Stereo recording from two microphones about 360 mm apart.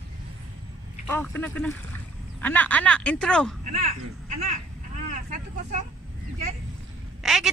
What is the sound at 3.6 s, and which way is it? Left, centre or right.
Speech, right.